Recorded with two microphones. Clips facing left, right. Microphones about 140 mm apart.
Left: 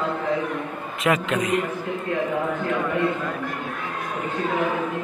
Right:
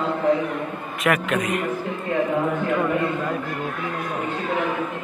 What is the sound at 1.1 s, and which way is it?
Speech, 25° left (ahead or behind).